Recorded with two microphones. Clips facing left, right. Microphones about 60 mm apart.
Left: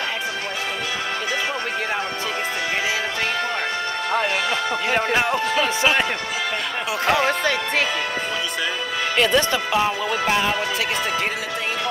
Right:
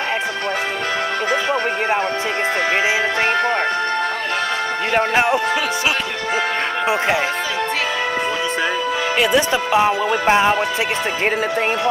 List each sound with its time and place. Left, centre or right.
4.9 s music: right
9.2 s speech: centre
9.7 s music: right